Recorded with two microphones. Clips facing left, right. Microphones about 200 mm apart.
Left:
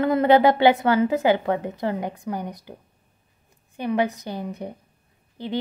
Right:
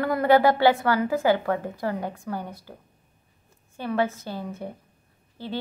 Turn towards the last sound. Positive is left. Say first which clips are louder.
# left 3 dB
turn(degrees=15)  # may be behind; listen again after turning